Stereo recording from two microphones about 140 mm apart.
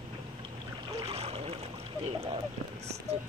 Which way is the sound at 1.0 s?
50° right (ahead or behind).